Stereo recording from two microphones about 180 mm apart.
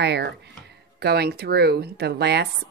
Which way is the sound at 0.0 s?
65° right (ahead or behind).